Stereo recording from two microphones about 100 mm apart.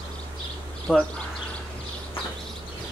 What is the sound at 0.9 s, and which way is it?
Speech, 10° left (ahead or behind).